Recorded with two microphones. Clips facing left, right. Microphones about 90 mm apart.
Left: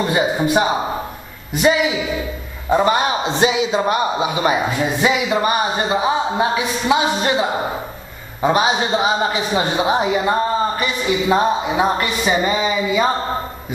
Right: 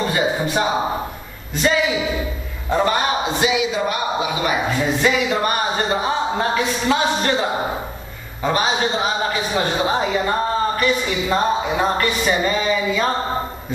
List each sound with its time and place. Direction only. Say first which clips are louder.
0.1 s a sound: left 3 dB; 20° left (ahead or behind)
1.5 s a man's voice: left 2 dB; 15° left (ahead or behind)
3.3 s speech: left 3 dB; 30° left (ahead or behind)
5.0 s speech: left 3 dB; 15° left (ahead or behind)